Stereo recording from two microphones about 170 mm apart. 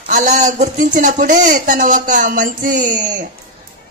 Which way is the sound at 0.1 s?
45° right (ahead or behind).